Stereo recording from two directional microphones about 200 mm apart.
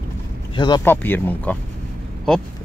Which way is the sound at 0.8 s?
10° left (ahead or behind).